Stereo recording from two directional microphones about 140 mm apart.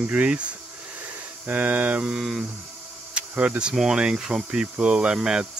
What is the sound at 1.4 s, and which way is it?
Speech, 10° right (ahead or behind).